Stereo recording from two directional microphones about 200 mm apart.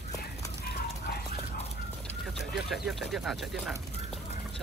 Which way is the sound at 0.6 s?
50° left (ahead or behind).